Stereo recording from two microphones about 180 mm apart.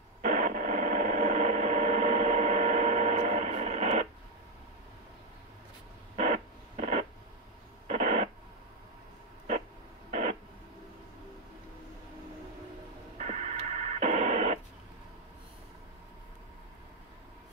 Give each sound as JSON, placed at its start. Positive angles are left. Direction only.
{"t": 0.2, "sound": "radio", "side_deg": -50}
{"t": 6.1, "sound": "radio", "side_deg": -45}
{"t": 13.2, "sound": "radio", "side_deg": -45}